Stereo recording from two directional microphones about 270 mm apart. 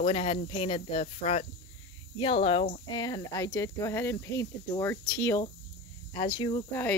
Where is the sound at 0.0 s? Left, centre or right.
Left.